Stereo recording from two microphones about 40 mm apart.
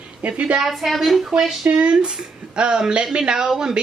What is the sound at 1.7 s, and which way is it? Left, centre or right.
A man's voice, right.